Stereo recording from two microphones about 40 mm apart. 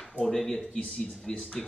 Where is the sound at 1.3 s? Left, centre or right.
Left.